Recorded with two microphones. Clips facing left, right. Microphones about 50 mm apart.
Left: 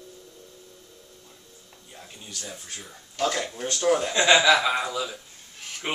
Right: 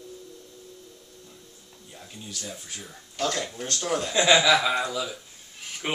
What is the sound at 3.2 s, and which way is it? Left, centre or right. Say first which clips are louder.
Speech: left 2 dB; centre.